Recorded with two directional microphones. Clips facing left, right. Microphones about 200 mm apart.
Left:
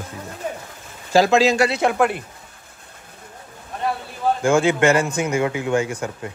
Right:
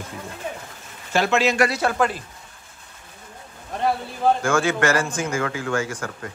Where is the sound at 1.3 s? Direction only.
30° left (ahead or behind).